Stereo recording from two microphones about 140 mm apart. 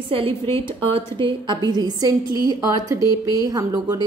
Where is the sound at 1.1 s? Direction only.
35° right (ahead or behind).